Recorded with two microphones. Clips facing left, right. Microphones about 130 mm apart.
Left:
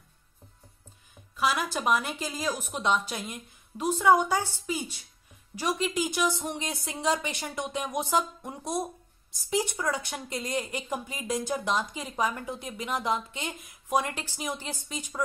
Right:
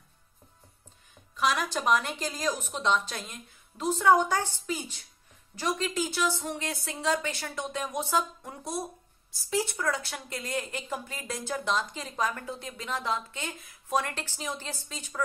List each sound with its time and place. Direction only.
1.3 s a woman's voice: 5° left (ahead or behind)